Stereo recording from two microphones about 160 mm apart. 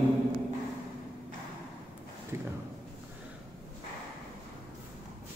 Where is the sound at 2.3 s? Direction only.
15° right (ahead or behind).